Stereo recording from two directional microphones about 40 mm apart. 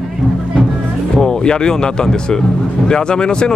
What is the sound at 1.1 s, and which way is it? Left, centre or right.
Speech, centre.